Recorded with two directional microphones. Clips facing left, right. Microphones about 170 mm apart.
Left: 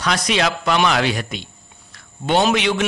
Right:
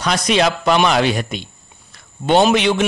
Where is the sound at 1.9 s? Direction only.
20° right (ahead or behind).